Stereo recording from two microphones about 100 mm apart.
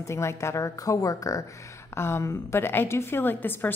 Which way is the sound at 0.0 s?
30° left (ahead or behind).